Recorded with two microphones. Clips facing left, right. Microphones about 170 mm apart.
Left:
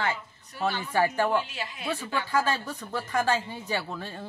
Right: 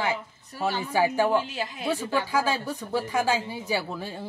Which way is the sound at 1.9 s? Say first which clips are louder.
Right 3 dB; 10° right (ahead or behind).